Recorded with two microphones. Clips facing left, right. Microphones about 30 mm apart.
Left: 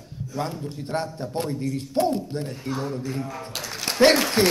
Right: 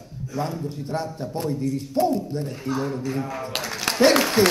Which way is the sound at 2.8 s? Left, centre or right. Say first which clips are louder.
Right 2 dB; right.